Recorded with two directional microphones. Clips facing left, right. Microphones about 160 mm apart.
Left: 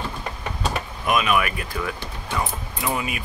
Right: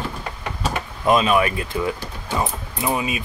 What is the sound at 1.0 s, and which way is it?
Speech, 30° right (ahead or behind).